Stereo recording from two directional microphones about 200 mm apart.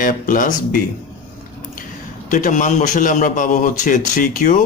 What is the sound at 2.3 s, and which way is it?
A man's voice, 40° left (ahead or behind).